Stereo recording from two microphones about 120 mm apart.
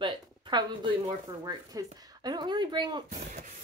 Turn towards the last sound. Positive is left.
turn(degrees=-40)  # may be behind; listen again after turning